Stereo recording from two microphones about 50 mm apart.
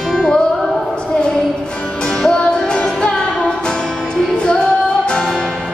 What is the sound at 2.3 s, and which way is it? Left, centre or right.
Music, centre.